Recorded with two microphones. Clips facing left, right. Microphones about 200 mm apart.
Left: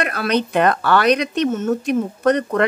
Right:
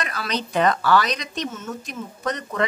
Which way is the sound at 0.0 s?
60° left (ahead or behind).